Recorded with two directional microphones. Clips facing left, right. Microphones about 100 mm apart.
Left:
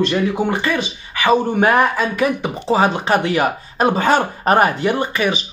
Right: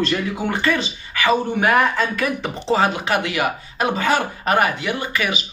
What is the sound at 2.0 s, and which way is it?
Speech, 15° left (ahead or behind).